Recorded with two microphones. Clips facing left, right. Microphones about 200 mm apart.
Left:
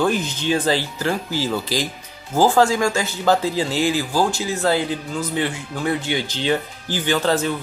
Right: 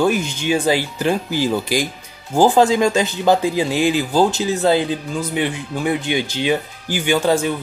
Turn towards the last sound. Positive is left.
turn(degrees=-10)  # may be behind; listen again after turning